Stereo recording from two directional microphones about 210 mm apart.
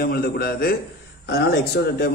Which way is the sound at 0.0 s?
45° left (ahead or behind).